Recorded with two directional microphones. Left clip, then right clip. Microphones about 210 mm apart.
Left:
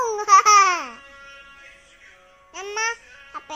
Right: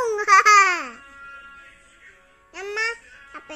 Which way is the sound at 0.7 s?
10° right (ahead or behind).